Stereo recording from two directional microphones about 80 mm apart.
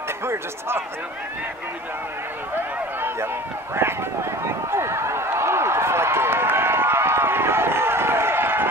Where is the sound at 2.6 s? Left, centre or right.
Right.